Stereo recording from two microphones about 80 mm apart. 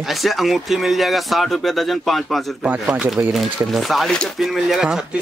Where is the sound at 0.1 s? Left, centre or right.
Centre.